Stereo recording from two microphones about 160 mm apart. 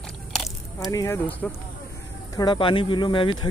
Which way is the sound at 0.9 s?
15° left (ahead or behind).